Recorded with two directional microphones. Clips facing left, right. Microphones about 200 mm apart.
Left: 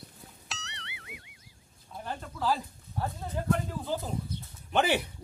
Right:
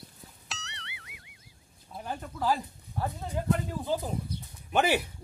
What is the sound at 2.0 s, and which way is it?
Speech, 15° right (ahead or behind).